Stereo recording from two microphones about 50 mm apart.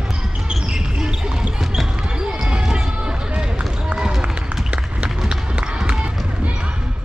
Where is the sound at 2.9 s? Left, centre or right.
Right.